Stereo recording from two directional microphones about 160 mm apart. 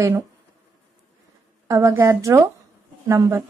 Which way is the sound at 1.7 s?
20° right (ahead or behind).